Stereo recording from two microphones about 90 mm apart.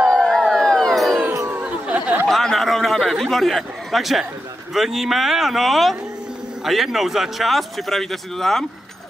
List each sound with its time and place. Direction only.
0.1 s crowd: 5° left (ahead or behind)
1.5 s chatter: 15° right (ahead or behind)
2.2 s chatter: centre (ahead or behind)
4.7 s speech: 5° right (ahead or behind)